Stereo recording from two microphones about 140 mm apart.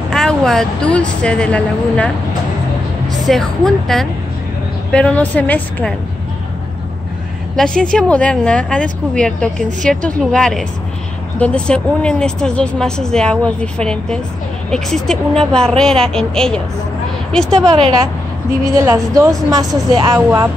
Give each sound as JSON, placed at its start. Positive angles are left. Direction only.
{"t": 0.1, "sound": "a woman's voice", "side_deg": 5}
{"t": 3.1, "sound": "a woman's voice", "side_deg": 0}
{"t": 7.5, "sound": "a woman's voice", "side_deg": 5}
{"t": 18.8, "sound": "a woman's voice", "side_deg": -25}
{"t": 20.2, "sound": "speech", "side_deg": -10}